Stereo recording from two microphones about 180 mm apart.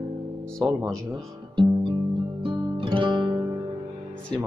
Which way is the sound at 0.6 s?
Centre (ahead or behind).